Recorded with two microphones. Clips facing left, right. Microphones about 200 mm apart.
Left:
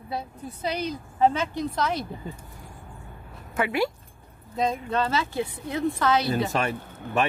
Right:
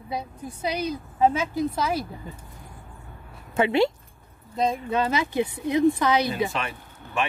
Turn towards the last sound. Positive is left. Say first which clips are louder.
# left 3 dB
turn(degrees=40)  # may be behind; listen again after turning